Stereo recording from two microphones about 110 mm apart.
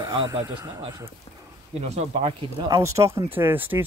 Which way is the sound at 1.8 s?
80° right.